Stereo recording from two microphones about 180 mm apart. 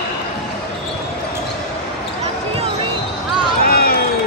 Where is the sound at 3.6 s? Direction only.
55° left (ahead or behind).